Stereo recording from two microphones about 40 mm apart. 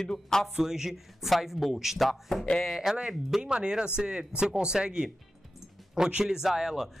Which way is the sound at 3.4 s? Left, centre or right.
Right.